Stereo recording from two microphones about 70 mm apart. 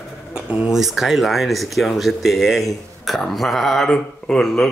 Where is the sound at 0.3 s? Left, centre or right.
Centre.